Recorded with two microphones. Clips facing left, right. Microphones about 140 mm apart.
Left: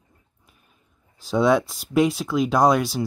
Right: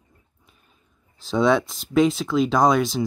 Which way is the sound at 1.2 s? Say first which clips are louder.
Even; 10° left (ahead or behind).